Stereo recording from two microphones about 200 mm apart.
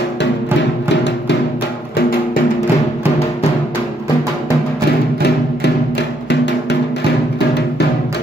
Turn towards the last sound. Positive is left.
turn(degrees=60)  # may be behind; listen again after turning